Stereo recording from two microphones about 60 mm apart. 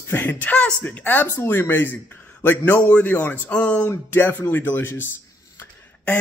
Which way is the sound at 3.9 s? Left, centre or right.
Left.